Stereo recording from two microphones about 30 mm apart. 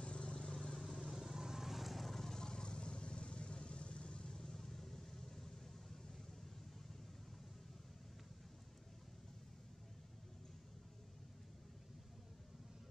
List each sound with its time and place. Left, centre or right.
0.0 s vehicle: left
0.5 s vehicle: centre
0.7 s vehicle: centre
2.1 s vehicle: centre
4.4 s vehicle: centre